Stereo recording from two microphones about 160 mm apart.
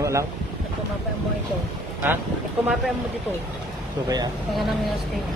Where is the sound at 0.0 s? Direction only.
20° right (ahead or behind).